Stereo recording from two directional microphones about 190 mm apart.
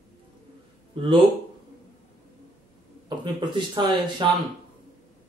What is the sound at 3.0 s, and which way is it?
Speech, 25° right (ahead or behind).